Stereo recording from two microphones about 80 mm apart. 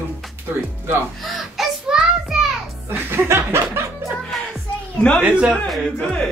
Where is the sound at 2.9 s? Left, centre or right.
Right.